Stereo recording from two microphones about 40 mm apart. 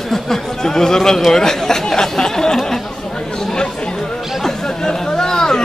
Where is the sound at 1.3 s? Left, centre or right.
Centre.